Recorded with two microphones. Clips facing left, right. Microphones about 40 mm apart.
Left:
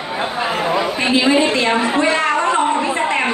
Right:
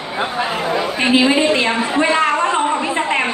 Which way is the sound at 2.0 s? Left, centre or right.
Right.